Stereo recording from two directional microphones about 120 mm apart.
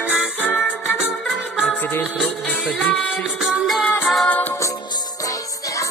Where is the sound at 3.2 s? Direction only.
5° right (ahead or behind).